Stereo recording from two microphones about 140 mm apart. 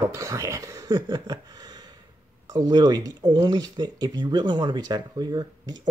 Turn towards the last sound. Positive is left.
turn(degrees=-30)  # may be behind; listen again after turning